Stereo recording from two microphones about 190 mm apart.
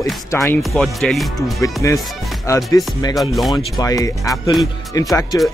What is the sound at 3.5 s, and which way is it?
Speech, 20° left (ahead or behind).